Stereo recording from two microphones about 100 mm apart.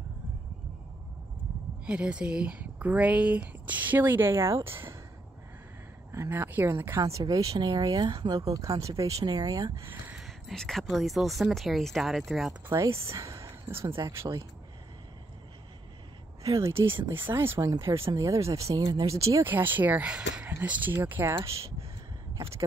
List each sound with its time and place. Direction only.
1.9 s speech: 10° right (ahead or behind)
6.1 s speech: 25° right (ahead or behind); by 9.7 s 40° right (ahead or behind)
10.1 s speech: 5° left (ahead or behind)
12.6 s speech: 25° right (ahead or behind)
16.4 s speech: 30° right (ahead or behind)
19.4 s speech: 20° right (ahead or behind)